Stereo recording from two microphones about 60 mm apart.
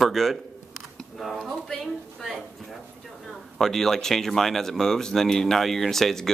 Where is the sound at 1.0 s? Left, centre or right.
Centre.